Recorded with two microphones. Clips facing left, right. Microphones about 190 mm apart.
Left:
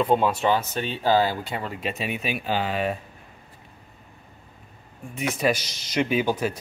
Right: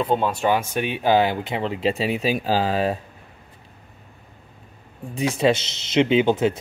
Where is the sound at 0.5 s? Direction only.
15° right (ahead or behind); by 3.0 s 35° right (ahead or behind).